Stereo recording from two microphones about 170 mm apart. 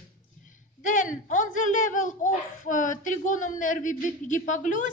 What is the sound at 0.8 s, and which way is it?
Speech, 50° left (ahead or behind).